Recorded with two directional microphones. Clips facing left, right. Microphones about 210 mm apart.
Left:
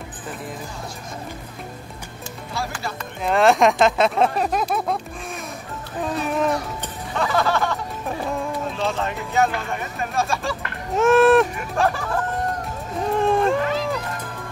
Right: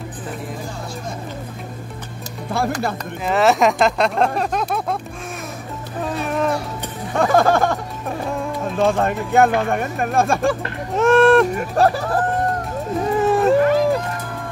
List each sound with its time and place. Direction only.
2.5 s speech: 55° right (ahead or behind)
3.3 s speech: centre (ahead or behind)
6.2 s music: centre (ahead or behind)
7.2 s speech: 45° right (ahead or behind)
10.9 s speech: centre (ahead or behind)
11.5 s speech: 40° right (ahead or behind)
13.2 s cat: 5° right (ahead or behind)
13.7 s music: 55° right (ahead or behind)